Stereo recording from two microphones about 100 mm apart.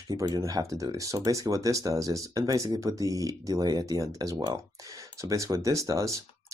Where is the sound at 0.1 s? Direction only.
35° right (ahead or behind).